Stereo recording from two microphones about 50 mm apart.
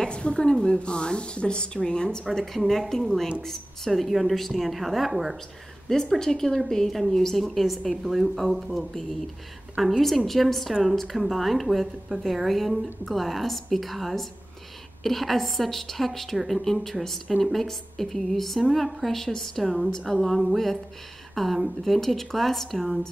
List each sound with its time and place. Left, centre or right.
0.0 s speech: centre
2.3 s a woman's voice: centre
5.9 s a woman's voice: centre